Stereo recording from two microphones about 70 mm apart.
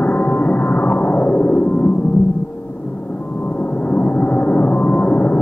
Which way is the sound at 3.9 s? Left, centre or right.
Left.